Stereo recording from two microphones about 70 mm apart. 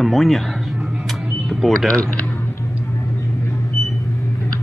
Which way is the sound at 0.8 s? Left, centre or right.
Centre.